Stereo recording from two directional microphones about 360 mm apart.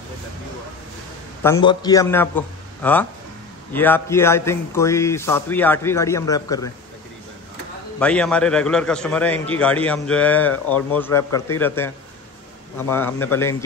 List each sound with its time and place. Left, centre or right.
1.4 s a man's voice: centre
8.0 s a man's voice: centre